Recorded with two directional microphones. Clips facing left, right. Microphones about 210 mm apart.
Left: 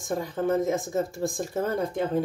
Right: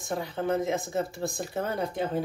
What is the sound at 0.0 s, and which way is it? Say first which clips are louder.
Speech: left 3 dB; 45° left (ahead or behind).